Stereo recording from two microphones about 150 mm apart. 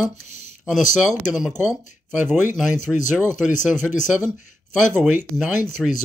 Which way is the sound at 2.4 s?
15° right (ahead or behind).